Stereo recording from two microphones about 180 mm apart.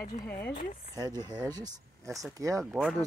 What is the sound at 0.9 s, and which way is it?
Speech, 20° right (ahead or behind).